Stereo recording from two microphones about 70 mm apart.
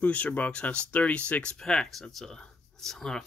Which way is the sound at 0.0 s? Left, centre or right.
Left.